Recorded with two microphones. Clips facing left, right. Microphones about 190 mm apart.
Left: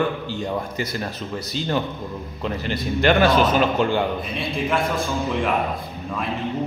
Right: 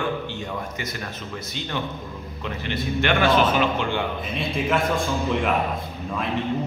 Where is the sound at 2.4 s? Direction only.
35° left (ahead or behind).